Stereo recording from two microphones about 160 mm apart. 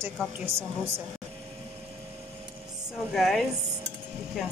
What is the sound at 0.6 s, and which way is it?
Speech, 15° right (ahead or behind).